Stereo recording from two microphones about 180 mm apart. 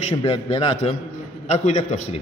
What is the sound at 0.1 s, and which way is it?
A man's voice, 30° left (ahead or behind).